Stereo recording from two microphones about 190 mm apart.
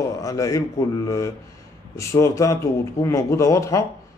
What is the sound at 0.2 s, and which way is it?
A man's voice, 15° left (ahead or behind).